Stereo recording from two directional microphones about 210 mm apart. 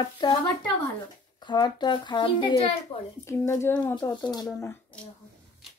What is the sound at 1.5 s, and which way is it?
Speech, 20° left (ahead or behind).